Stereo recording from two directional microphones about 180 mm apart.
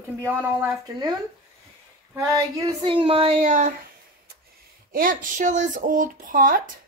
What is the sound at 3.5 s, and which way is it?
Speech, 45° right (ahead or behind).